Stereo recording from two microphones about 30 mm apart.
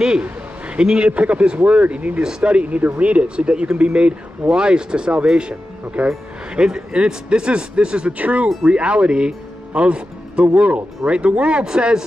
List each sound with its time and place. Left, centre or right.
0.7 s speech: right
8.2 s speech: right
8.6 s speech: right
10.4 s speech: right
11.1 s speech: right
11.6 s speech: right